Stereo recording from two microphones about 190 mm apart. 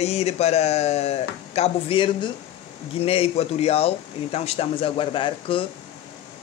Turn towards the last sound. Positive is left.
turn(degrees=25)  # may be behind; listen again after turning